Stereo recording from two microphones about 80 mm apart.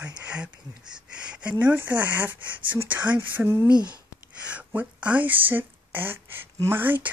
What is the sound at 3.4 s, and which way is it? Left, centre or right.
Speech, right.